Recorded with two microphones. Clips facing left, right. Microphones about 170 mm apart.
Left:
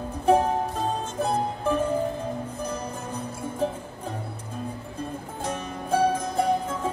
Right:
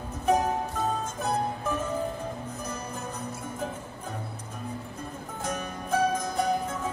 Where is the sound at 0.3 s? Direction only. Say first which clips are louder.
Left 4 dB; 30° left (ahead or behind).